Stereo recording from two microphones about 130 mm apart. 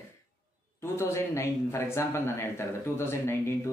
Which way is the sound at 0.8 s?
20° left (ahead or behind).